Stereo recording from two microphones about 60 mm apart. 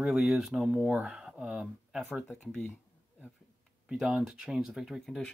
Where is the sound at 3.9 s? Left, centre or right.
Centre.